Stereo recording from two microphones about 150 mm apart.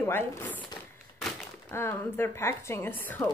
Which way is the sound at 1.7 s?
15° left (ahead or behind).